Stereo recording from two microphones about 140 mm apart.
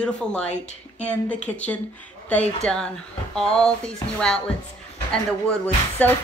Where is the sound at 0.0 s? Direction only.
5° left (ahead or behind).